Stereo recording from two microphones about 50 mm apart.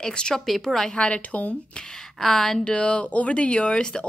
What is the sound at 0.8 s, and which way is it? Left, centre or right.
A woman's voice, left.